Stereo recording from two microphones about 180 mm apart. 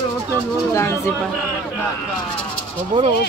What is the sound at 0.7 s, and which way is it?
Speech, 15° left (ahead or behind).